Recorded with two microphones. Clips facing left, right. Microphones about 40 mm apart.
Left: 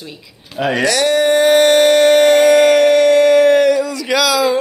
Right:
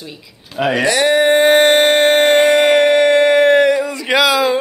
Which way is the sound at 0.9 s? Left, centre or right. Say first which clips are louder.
Right 1 dB; right.